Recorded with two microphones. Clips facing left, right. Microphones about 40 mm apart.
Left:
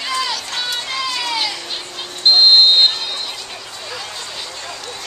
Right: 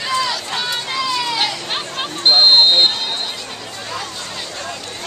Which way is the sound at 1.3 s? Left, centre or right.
Right.